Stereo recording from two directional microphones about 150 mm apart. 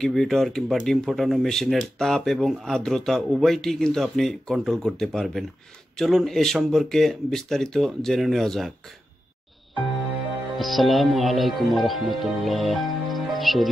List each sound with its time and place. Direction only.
0.0 s speech: 5° left (ahead or behind)
10.6 s speech: centre (ahead or behind)